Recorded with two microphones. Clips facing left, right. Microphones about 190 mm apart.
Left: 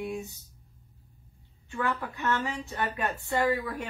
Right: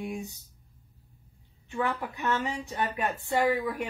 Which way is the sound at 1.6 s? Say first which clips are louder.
Right 1 dB; 15° right (ahead or behind).